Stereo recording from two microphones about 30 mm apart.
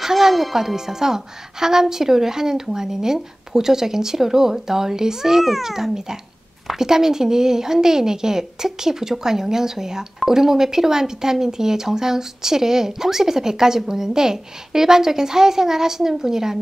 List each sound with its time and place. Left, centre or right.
0.0 s a woman's voice: centre